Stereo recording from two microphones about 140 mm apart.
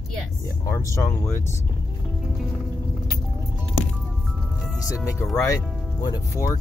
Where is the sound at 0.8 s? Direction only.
20° left (ahead or behind).